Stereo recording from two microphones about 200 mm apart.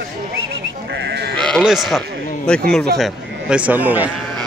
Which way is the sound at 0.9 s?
60° right (ahead or behind).